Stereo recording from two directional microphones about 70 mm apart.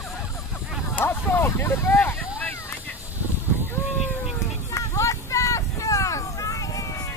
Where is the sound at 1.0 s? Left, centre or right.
Left.